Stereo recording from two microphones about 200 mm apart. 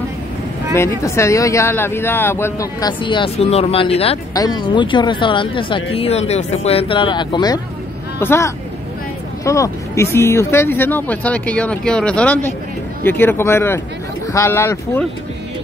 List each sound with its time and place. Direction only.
0.7 s speech: 15° left (ahead or behind)